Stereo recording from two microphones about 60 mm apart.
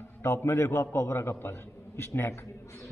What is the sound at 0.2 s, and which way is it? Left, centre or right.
A man's voice, left.